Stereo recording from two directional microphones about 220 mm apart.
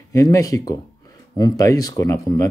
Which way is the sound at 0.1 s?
15° left (ahead or behind).